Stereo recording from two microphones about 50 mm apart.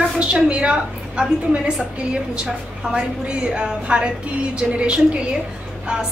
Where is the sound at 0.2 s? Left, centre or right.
Right.